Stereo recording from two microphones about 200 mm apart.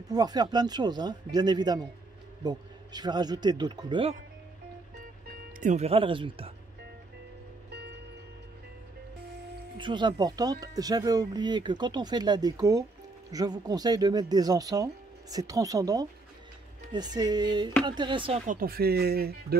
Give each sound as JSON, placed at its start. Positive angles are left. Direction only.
{"t": 0.1, "sound": "speech", "side_deg": -20}
{"t": 5.6, "sound": "speech", "side_deg": -35}
{"t": 9.8, "sound": "speech", "side_deg": -25}
{"t": 18.4, "sound": "speech", "side_deg": -45}